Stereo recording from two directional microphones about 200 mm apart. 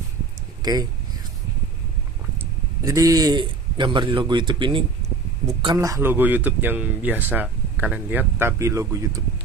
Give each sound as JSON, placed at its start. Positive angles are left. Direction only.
{"t": 0.6, "sound": "a man's voice", "side_deg": -20}
{"t": 2.8, "sound": "a man's voice", "side_deg": -15}